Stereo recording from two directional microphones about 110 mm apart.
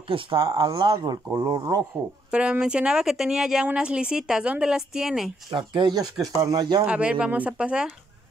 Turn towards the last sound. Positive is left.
turn(degrees=-10)  # may be behind; listen again after turning